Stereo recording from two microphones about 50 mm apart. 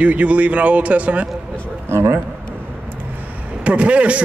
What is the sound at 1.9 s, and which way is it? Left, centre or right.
Speech, right.